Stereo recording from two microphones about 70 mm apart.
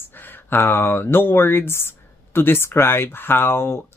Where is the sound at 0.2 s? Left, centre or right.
Left.